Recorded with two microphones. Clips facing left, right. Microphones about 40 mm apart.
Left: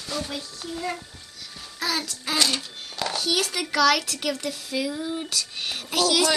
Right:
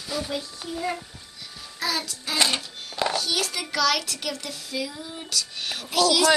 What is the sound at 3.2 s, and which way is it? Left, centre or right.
Speech, centre.